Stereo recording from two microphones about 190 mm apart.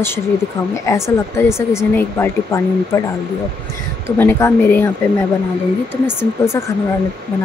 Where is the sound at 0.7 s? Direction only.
15° left (ahead or behind).